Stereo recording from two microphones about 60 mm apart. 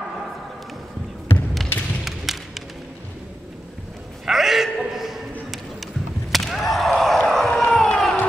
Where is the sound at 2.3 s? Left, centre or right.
Centre.